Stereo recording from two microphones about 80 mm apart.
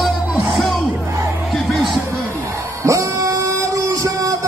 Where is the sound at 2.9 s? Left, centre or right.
Right.